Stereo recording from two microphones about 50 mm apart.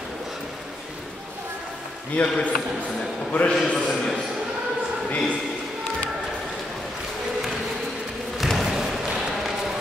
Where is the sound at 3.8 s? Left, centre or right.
Centre.